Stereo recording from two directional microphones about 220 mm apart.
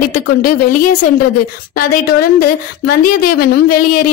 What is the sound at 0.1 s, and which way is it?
A woman's voice, 40° left (ahead or behind).